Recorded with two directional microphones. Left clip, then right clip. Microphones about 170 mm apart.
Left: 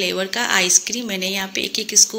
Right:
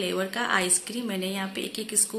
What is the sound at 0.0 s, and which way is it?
Speech, 20° left (ahead or behind).